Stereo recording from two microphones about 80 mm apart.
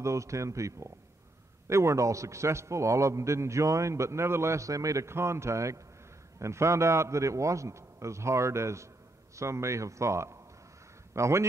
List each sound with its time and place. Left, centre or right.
0.0 s a man's voice: right